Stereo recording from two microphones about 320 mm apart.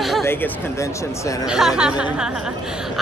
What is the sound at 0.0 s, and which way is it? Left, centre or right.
Speech, centre.